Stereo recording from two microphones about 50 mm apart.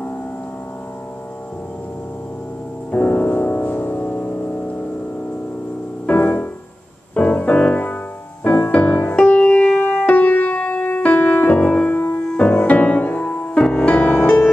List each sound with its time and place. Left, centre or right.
2.9 s music: left
6.0 s music: left
11.9 s music: left
12.3 s music: left